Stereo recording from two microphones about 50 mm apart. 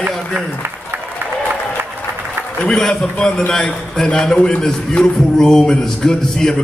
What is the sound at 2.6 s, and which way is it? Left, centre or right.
A man's voice, centre.